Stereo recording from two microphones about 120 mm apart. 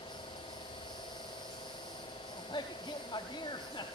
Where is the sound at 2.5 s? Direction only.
40° left (ahead or behind).